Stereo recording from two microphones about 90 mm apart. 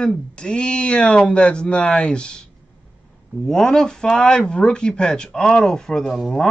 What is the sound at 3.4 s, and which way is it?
Speech, 5° left (ahead or behind).